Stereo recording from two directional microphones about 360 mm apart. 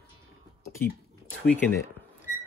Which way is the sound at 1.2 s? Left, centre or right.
Centre.